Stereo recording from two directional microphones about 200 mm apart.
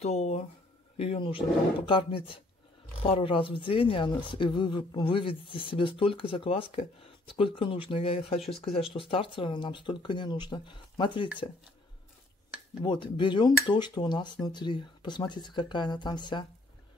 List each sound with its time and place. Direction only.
0.0 s speech: 30° left (ahead or behind)
12.8 s speech: 25° left (ahead or behind)